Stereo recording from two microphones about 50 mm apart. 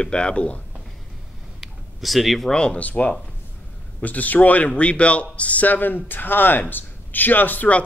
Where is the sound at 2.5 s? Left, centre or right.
Centre.